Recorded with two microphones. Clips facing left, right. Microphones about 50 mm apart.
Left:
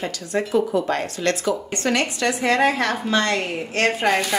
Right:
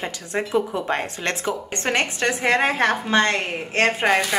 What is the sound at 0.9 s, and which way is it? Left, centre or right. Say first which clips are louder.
Speech: left 2 dB; right.